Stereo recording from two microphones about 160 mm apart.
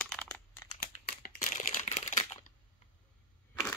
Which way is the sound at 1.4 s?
50° left (ahead or behind).